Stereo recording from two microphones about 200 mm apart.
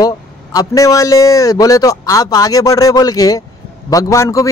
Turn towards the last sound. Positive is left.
turn(degrees=15)  # may be behind; listen again after turning